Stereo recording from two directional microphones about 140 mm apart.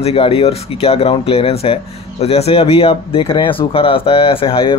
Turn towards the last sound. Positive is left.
turn(degrees=40)  # may be behind; listen again after turning